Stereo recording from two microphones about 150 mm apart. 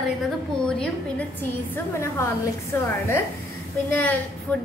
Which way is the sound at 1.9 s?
15° left (ahead or behind).